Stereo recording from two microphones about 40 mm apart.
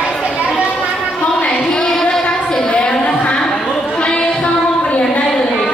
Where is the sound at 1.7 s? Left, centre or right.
Centre.